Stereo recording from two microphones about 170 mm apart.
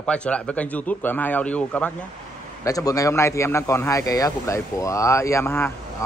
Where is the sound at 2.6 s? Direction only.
20° left (ahead or behind).